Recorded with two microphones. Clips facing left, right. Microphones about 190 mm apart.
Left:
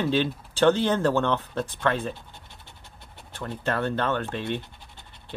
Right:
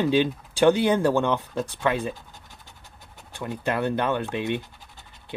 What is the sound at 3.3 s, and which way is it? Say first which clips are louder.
Speech: right 1 dB; 15° right (ahead or behind).